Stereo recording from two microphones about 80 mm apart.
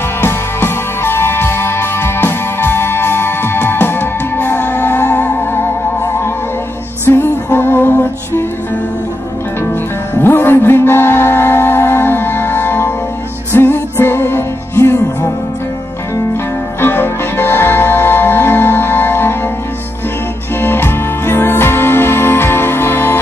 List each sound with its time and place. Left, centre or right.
0.2 s music: left
7.1 s music: left
10.2 s music: left
16.8 s music: left
20.6 s music: left